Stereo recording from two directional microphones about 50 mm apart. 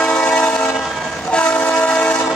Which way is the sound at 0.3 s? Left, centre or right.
Left.